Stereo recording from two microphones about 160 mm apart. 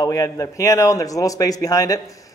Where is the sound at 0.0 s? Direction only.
20° left (ahead or behind).